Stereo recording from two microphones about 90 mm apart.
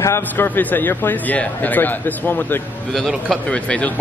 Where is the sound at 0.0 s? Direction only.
30° left (ahead or behind).